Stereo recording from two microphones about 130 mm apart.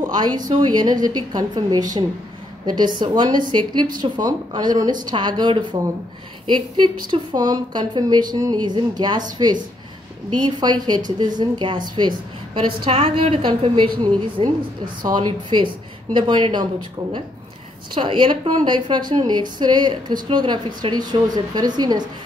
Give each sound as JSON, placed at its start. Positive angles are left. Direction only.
{"t": 0.0, "sound": "a woman's voice", "side_deg": -30}
{"t": 10.4, "sound": "a woman's voice", "side_deg": -35}
{"t": 17.9, "sound": "a woman's voice", "side_deg": -40}